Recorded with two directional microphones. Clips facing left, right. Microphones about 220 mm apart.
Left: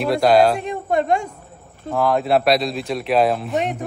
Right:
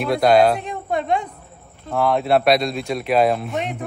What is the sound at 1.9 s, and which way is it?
A man's voice, centre (ahead or behind).